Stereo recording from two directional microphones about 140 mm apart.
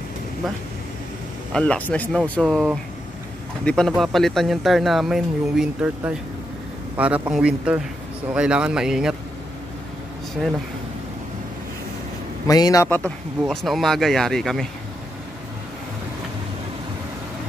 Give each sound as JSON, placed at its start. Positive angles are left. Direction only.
{"t": 1.5, "sound": "speech", "side_deg": 10}
{"t": 10.4, "sound": "speech", "side_deg": 0}
{"t": 12.4, "sound": "a man's voice", "side_deg": 25}
{"t": 13.5, "sound": "speech", "side_deg": 0}